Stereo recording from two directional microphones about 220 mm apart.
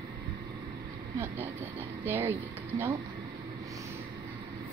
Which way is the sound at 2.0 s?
10° right (ahead or behind).